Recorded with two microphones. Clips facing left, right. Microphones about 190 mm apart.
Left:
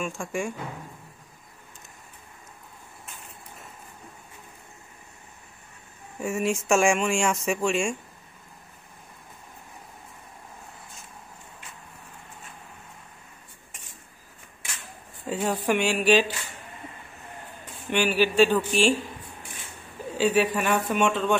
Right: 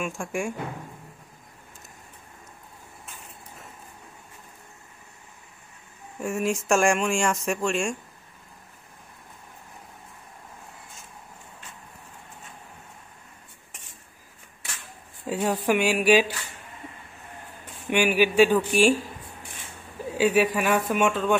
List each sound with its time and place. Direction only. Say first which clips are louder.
0.0 s speech: even; 10° right (ahead or behind)
6.1 s speech: even; centre (ahead or behind)
15.2 s speech: right 1 dB; centre (ahead or behind)
17.8 s speech: right 2 dB; 10° right (ahead or behind)
20.1 s speech: right 1 dB; 10° right (ahead or behind)